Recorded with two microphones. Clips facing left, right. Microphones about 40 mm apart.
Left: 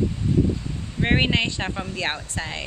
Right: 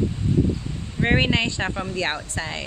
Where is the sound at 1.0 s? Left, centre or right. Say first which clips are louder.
Right 1 dB; centre.